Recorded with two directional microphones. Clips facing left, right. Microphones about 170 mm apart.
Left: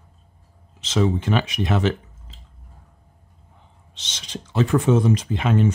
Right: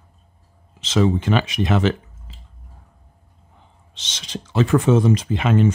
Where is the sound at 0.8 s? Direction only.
90° right.